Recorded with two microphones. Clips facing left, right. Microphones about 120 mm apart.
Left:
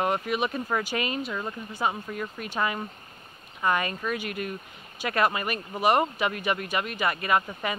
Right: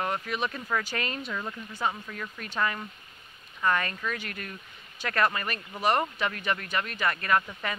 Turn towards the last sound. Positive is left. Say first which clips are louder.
# left 2 dB
turn(degrees=15)  # may be behind; listen again after turning